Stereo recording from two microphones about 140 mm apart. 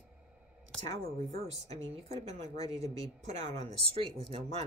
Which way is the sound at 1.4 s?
50° right (ahead or behind).